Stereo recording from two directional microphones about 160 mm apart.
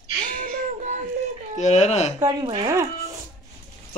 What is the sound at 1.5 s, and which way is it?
Speech, 45° left (ahead or behind).